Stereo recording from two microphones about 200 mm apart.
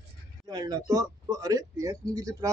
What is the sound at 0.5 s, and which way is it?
Speech, 20° right (ahead or behind).